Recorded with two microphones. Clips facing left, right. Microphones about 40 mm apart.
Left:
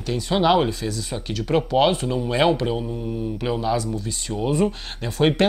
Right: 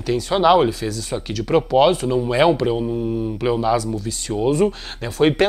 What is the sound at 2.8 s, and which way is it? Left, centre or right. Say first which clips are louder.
Speech: right 7 dB; centre.